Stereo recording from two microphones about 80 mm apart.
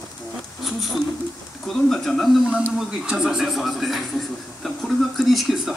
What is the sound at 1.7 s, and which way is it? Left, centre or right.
Speech, centre.